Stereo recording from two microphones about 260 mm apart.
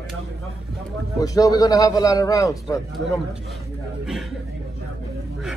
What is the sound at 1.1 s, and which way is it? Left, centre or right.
A man's voice, centre.